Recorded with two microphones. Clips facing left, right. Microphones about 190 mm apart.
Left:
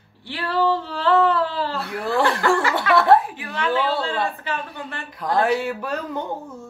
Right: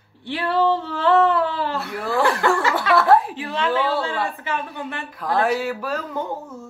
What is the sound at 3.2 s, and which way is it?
A woman's voice, 30° right (ahead or behind).